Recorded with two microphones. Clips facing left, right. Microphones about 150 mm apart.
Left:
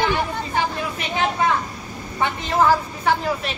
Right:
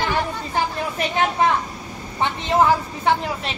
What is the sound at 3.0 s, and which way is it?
Speech, 25° right (ahead or behind).